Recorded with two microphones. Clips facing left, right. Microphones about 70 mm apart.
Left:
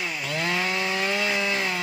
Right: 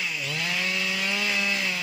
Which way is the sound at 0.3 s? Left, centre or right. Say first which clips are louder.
Left 5 dB; left.